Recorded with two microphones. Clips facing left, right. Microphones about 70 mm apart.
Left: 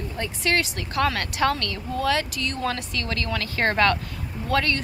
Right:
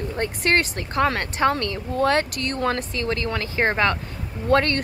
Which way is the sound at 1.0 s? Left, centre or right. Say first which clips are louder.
Right 2 dB; right.